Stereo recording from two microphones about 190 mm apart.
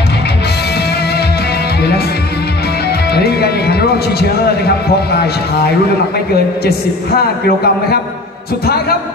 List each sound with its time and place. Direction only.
1.8 s music: 55° left (ahead or behind)
3.2 s a man's voice: 60° left (ahead or behind)
7.4 s a man's voice: 55° left (ahead or behind)